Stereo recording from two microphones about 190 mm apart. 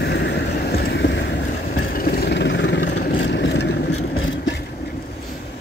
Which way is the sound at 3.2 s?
70° left (ahead or behind).